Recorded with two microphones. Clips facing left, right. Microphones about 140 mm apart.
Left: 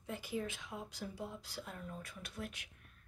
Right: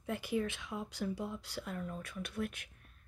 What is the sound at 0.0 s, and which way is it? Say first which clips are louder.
Speech: right 5 dB; 65° right (ahead or behind).